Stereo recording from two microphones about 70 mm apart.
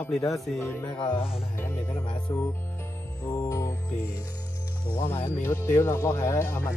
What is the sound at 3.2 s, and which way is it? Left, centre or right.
Music, left.